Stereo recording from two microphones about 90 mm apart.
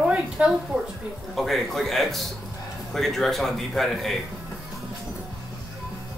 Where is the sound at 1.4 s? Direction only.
Centre (ahead or behind).